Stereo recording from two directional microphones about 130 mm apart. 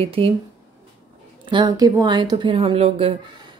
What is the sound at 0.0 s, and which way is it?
Speech, 45° right (ahead or behind).